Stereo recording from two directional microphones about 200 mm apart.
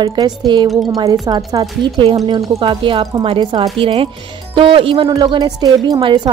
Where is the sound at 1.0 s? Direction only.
20° right (ahead or behind).